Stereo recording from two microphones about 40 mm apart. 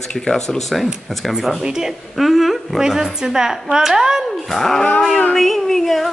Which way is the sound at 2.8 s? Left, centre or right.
Centre.